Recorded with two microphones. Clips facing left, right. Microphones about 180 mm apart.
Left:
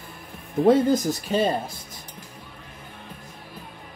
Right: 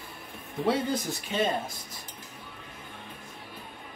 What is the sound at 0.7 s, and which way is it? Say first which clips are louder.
Speech: left 9 dB; 45° left (ahead or behind).